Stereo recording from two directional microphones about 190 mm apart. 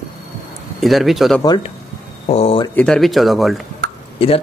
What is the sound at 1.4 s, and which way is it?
A man's voice, 20° left (ahead or behind).